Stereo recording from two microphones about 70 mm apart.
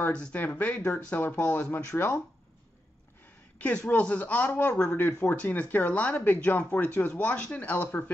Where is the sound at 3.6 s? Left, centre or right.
Centre.